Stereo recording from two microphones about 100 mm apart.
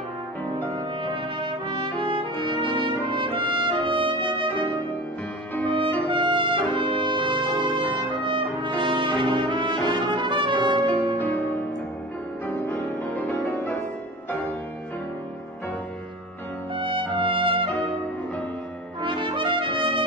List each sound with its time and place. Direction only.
1.0 s trumpet: 55° right (ahead or behind)
6.1 s music: 55° right (ahead or behind)
11.1 s music: 20° left (ahead or behind)
16.7 s music: 60° right (ahead or behind)
19.0 s brass instrument: 55° right (ahead or behind)